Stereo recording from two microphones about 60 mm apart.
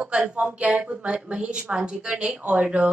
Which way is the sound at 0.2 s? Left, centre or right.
Right.